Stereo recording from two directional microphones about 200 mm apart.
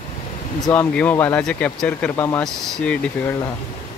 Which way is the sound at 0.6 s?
5° left (ahead or behind).